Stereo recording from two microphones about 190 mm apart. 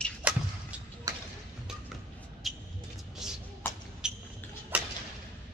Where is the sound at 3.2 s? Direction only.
Centre (ahead or behind).